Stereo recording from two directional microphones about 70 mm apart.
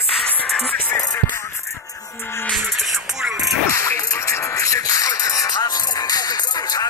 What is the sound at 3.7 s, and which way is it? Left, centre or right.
Music, left.